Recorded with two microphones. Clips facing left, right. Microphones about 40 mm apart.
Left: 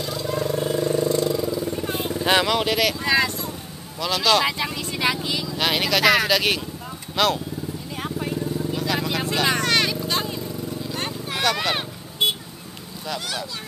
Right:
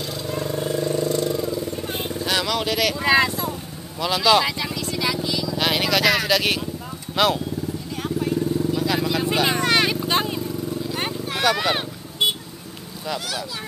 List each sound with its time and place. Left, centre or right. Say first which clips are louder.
0.3 s vehicle: left 1 dB; centre
2.2 s speech: left 4 dB; centre
3.0 s speech: right 3 dB; centre
4.5 s vehicle: even; centre
5.6 s speech: even; centre
7.9 s vehicle: right 4 dB; centre
9.3 s vehicle: even; centre
9.8 s vehicle: right 3 dB; right
11.2 s speech: right 2 dB; centre